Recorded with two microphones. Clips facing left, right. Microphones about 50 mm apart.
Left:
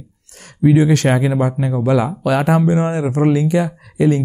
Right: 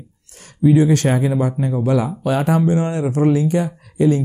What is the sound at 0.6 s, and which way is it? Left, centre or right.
Speech, left.